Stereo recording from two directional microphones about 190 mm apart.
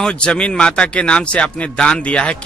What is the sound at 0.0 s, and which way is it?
Speech, 5° left (ahead or behind).